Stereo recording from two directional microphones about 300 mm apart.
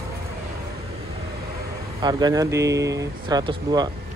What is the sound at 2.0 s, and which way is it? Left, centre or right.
Speech, centre.